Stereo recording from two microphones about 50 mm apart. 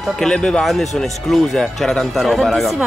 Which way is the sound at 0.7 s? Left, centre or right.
Centre.